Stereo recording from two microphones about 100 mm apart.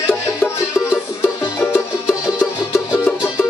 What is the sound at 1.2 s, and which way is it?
Music, 20° left (ahead or behind).